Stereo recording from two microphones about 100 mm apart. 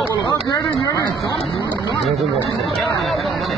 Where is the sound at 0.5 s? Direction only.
35° left (ahead or behind).